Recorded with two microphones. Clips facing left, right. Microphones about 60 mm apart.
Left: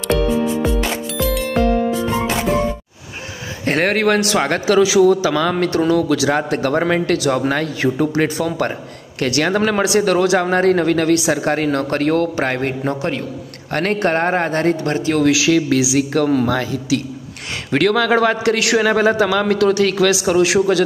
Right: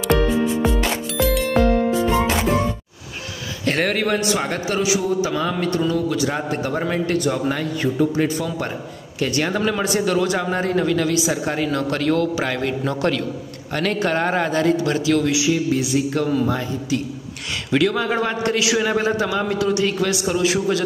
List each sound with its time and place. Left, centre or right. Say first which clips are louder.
1.1 s music: right 2 dB; centre
3.6 s a man's voice: left 4 dB; left
4.2 s a man's voice: left 4 dB; left
15.2 s speech: left 5 dB; left
16.1 s a man's voice: left 4 dB; left
16.4 s a man's voice: left 4 dB; left
17.6 s speech: left 3 dB; left
17.9 s a man's voice: left 6 dB; left